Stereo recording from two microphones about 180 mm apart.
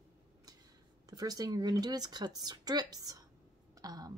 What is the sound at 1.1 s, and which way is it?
Speech, 20° right (ahead or behind).